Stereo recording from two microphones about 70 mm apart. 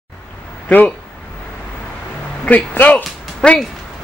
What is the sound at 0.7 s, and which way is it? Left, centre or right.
Speech, centre.